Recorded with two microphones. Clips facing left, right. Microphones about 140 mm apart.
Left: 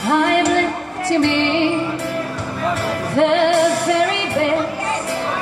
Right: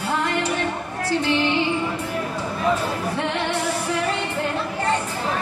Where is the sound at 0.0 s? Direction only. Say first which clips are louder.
Left 8 dB; 75° left (ahead or behind).